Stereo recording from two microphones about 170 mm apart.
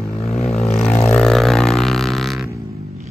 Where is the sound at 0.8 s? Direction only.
10° left (ahead or behind).